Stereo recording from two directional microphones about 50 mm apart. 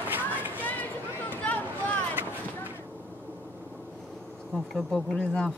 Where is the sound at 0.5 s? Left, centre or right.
Left.